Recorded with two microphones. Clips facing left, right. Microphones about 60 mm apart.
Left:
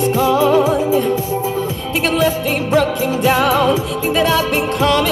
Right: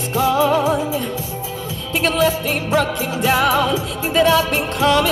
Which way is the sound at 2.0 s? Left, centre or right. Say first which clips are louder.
Left 1 dB; centre.